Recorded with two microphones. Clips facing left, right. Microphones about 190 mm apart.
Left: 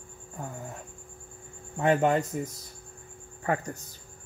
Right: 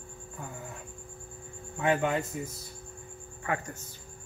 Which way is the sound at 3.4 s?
35° left (ahead or behind).